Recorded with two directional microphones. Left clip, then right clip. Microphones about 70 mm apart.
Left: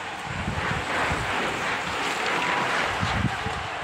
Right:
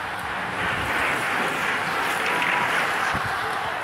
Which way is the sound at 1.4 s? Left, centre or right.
Centre.